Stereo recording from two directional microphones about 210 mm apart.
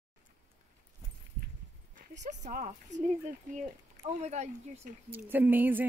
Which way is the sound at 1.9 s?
35° right (ahead or behind).